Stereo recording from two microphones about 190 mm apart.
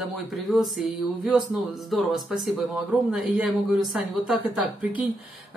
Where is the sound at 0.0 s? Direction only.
Centre (ahead or behind).